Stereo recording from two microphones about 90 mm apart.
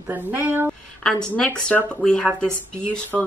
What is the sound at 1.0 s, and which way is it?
Speech, 10° left (ahead or behind).